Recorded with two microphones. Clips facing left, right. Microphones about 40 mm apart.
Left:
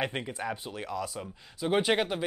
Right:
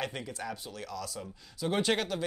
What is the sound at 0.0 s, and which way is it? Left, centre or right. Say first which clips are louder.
Speech: left 4 dB; left.